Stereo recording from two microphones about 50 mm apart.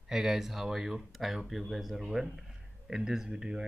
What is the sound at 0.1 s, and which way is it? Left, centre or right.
Speech, centre.